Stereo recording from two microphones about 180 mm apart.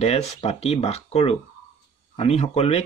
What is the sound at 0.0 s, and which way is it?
Speech, 35° left (ahead or behind).